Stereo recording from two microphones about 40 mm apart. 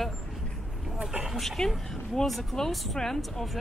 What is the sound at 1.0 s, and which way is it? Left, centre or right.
Speech, right.